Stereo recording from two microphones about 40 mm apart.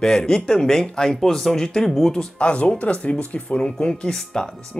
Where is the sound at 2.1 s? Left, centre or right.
Left.